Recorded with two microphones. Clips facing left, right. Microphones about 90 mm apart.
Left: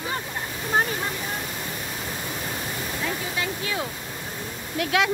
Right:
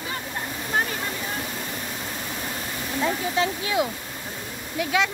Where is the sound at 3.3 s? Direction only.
15° right (ahead or behind).